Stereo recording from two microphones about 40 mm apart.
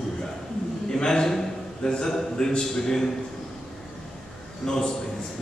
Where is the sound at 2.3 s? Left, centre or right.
Centre.